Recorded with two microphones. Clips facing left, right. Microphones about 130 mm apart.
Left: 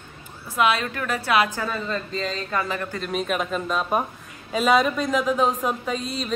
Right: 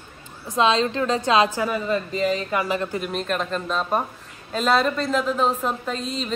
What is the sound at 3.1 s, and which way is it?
Speech, 5° left (ahead or behind).